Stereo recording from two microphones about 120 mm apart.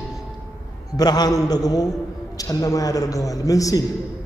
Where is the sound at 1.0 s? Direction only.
35° left (ahead or behind).